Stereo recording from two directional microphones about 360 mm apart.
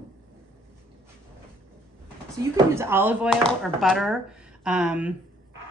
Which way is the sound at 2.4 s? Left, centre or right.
Centre.